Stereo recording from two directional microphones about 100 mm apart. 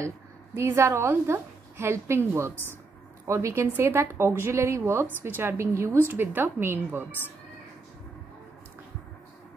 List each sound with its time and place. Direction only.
0.6 s a woman's voice: 30° right (ahead or behind)